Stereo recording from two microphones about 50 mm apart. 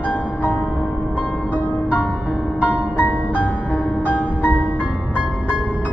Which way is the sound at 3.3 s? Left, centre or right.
Left.